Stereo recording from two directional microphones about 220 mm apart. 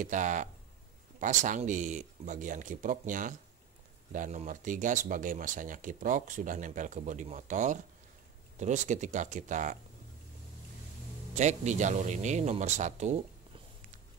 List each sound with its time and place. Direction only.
0.0 s speech: 35° right (ahead or behind)
11.3 s speech: 30° right (ahead or behind)